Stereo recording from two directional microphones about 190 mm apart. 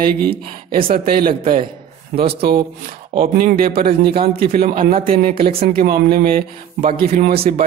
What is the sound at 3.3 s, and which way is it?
Speech, 50° right (ahead or behind).